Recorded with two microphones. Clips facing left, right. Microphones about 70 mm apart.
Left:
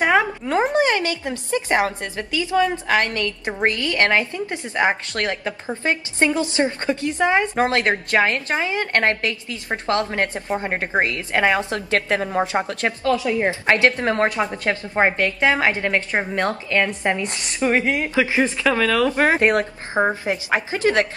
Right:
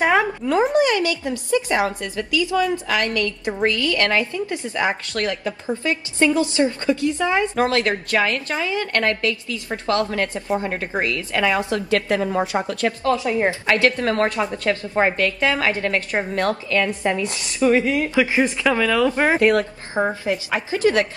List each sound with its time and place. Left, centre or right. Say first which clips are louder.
0.7 s a woman's voice: right 1 dB; left
13.0 s a woman's voice: even; right
13.5 s a woman's voice: left 3 dB; left
18.6 s speech: even; centre
19.2 s a woman's voice: right 1 dB; left